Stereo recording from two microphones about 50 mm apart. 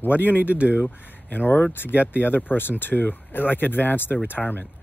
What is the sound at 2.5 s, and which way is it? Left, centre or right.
Speech, left.